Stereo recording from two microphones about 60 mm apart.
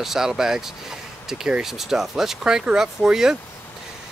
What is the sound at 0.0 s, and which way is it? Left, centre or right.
Speech, centre.